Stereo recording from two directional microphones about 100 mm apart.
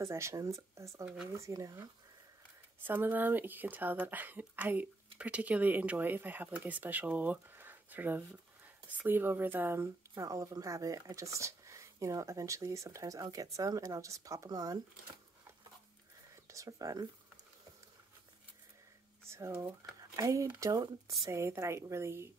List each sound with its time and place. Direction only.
0.0 s speech: 30° right (ahead or behind)
1.0 s speech: 10° right (ahead or behind)
1.3 s speech: 30° right (ahead or behind)
2.8 s speech: 20° right (ahead or behind); by 14.8 s 40° right (ahead or behind)
16.4 s speech: 35° right (ahead or behind)
19.2 s speech: 25° right (ahead or behind)
20.0 s a sound: 35° right (ahead or behind)
20.6 s a woman's voice: 35° right (ahead or behind)